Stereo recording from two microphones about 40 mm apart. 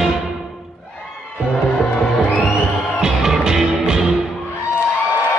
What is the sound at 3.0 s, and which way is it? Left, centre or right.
Music, centre.